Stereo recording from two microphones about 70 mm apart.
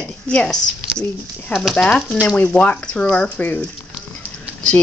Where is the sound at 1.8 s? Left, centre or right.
Centre.